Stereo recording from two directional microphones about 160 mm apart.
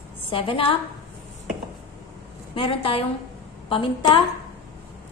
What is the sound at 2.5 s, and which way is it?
A woman's voice, 35° left (ahead or behind).